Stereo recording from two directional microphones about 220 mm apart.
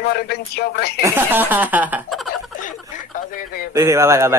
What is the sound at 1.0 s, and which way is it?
Speech, 10° right (ahead or behind).